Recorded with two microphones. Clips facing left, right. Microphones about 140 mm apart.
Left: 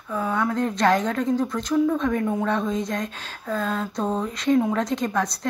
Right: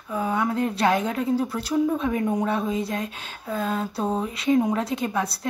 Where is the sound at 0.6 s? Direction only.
5° right (ahead or behind).